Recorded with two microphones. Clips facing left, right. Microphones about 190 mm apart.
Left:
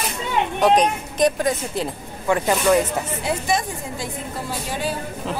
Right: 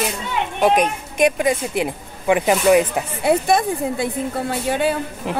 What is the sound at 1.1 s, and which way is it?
Speech, 10° right (ahead or behind).